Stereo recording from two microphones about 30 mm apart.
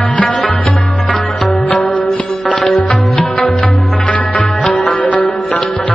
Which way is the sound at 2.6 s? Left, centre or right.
Left.